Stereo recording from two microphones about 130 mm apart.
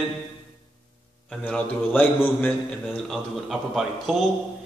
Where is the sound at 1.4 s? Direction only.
10° left (ahead or behind).